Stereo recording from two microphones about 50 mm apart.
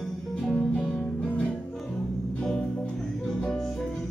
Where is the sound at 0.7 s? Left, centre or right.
Left.